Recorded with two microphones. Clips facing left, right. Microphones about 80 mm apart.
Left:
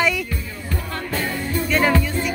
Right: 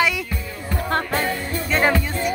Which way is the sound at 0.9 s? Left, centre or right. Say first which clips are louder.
Right 5 dB; right.